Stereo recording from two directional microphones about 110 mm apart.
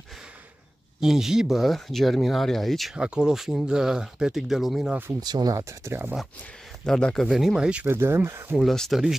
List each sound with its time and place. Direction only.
1.0 s speech: 5° right (ahead or behind)
5.2 s speech: 35° right (ahead or behind); by 6.1 s 20° right (ahead or behind)
6.8 s speech: 5° left (ahead or behind)
7.8 s speech: 20° right (ahead or behind)
8.5 s speech: 5° left (ahead or behind)